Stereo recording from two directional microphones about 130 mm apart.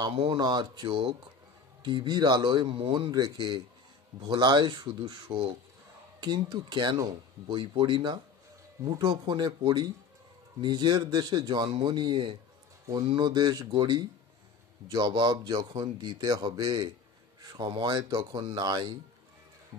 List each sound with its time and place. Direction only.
0.2 s speech: 30° right (ahead or behind)